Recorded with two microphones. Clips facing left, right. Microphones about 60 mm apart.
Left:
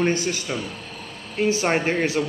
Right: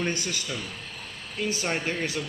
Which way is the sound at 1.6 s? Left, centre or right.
Left.